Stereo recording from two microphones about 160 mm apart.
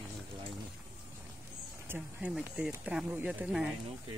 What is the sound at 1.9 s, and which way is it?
Speech, 5° right (ahead or behind).